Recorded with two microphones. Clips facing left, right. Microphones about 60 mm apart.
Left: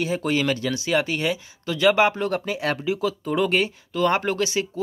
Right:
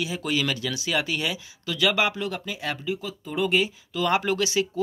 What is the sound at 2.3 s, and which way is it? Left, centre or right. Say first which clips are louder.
Speech: left 6 dB; left.